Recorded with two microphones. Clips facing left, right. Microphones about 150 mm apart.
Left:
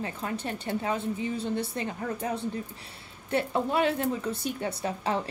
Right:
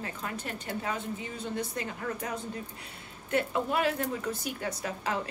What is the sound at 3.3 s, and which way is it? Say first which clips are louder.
Speech: left 2 dB; 30° left (ahead or behind).